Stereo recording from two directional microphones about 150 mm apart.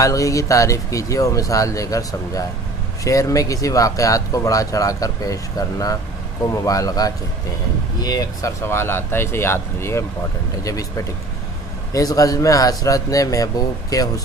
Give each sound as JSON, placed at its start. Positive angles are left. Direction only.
{"t": 0.0, "sound": "speech", "side_deg": 20}